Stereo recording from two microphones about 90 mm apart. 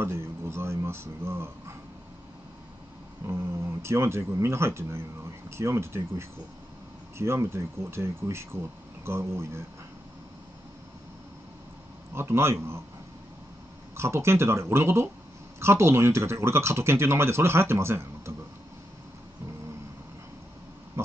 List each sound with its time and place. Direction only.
0.0 s a sound: 25° right (ahead or behind)
3.8 s speech: 30° right (ahead or behind)
12.1 s speech: 30° right (ahead or behind)
13.9 s speech: 30° right (ahead or behind)